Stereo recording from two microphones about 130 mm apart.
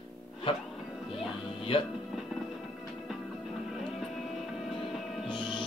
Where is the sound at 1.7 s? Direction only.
40° left (ahead or behind).